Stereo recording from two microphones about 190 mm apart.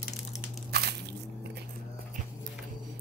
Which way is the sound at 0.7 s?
60° right (ahead or behind).